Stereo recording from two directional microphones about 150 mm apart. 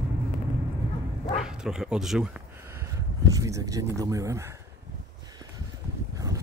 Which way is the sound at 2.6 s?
20° right (ahead or behind).